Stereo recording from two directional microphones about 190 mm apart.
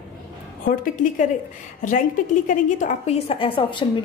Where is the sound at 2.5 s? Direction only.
45° left (ahead or behind); by 4.0 s 25° left (ahead or behind).